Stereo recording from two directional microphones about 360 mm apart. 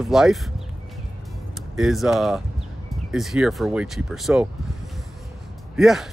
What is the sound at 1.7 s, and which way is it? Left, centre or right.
Speech, centre.